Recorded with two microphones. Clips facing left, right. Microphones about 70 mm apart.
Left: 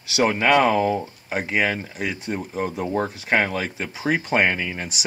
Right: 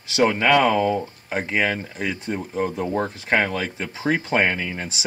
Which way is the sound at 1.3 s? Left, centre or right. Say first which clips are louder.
Even; centre.